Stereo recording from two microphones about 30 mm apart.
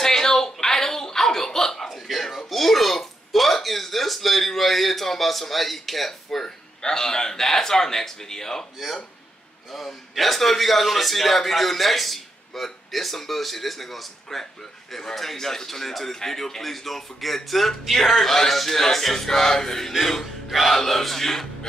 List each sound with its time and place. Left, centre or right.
0.0 s a sound: centre
1.9 s a sound: centre
6.8 s a man's voice: left
9.7 s a man's voice: centre
20.4 s music: centre
20.8 s a man's voice: centre